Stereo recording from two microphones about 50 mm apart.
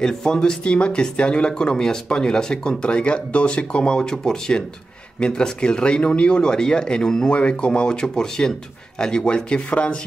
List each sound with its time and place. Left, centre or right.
0.0 s speech: centre